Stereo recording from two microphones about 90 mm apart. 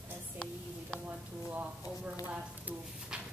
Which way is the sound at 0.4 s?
5° left (ahead or behind).